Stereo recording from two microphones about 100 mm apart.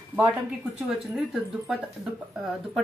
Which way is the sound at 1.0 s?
5° right (ahead or behind).